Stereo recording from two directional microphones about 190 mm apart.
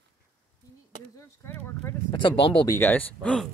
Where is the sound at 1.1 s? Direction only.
15° left (ahead or behind).